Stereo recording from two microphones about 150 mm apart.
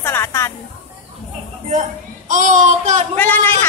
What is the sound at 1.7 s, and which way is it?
A woman's voice, 55° right (ahead or behind).